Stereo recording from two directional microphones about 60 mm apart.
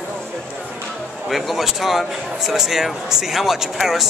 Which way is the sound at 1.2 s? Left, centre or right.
Centre.